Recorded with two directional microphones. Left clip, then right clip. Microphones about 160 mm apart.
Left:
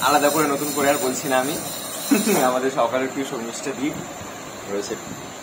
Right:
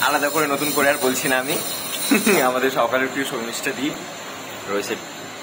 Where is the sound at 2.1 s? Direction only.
25° right (ahead or behind).